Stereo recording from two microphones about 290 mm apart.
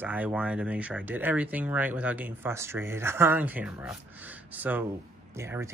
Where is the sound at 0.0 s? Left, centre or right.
Centre.